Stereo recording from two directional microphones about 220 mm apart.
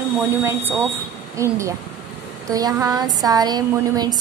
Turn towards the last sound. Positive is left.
turn(degrees=-15)  # may be behind; listen again after turning